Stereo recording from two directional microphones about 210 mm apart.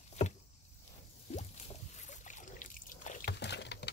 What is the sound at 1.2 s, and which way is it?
Boat, 30° left (ahead or behind).